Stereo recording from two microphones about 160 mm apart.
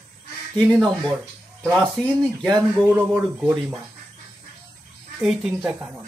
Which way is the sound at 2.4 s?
Centre (ahead or behind).